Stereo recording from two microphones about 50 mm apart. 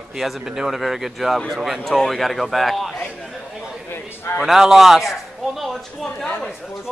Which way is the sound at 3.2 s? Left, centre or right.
Centre.